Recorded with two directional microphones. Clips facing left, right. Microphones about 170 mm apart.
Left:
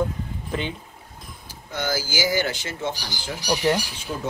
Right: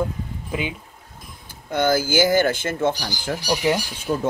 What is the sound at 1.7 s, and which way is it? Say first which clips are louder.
Speech: right 8 dB; 55° right (ahead or behind).